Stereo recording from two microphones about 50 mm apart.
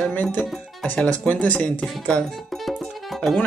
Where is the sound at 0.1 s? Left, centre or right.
Left.